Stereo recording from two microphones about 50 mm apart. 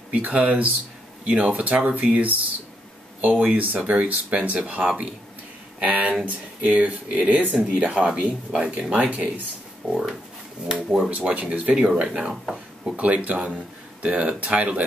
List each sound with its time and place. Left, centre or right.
0.1 s speech: right
10.7 s speech: centre
11.2 s speech: right